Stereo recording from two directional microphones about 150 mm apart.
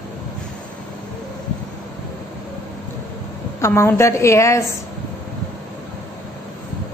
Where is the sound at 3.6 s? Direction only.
15° left (ahead or behind).